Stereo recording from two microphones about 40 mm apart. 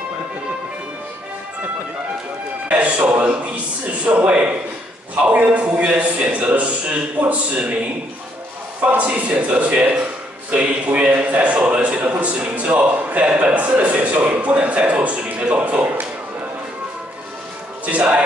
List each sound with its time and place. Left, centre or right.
2.7 s a man's voice: right
8.8 s a man's voice: right
17.8 s speech: right